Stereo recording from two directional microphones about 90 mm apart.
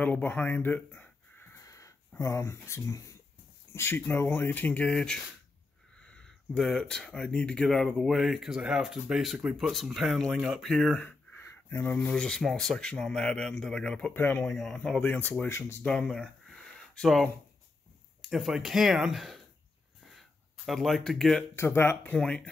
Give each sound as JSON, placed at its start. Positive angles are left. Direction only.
{"t": 0.0, "sound": "speech", "side_deg": 20}
{"t": 1.6, "sound": "a sound", "side_deg": 35}
{"t": 3.7, "sound": "speech", "side_deg": 25}
{"t": 11.0, "sound": "a sound", "side_deg": 20}
{"t": 12.1, "sound": "a man's voice", "side_deg": 5}
{"t": 14.1, "sound": "speech", "side_deg": 20}
{"t": 14.5, "sound": "a man's voice", "side_deg": 10}
{"t": 15.0, "sound": "speech", "side_deg": 20}
{"t": 15.8, "sound": "a sound", "side_deg": 10}
{"t": 18.3, "sound": "speech", "side_deg": -5}
{"t": 20.1, "sound": "a sound", "side_deg": 0}
{"t": 21.5, "sound": "speech", "side_deg": 25}
{"t": 22.1, "sound": "a man's voice", "side_deg": 10}